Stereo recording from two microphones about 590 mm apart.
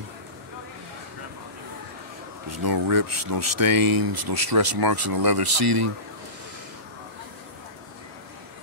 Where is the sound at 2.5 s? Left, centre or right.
Right.